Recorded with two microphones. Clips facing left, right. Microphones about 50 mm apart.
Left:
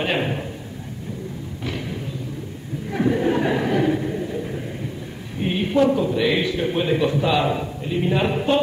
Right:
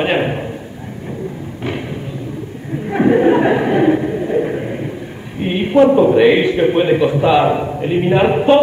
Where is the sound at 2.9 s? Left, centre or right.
Right.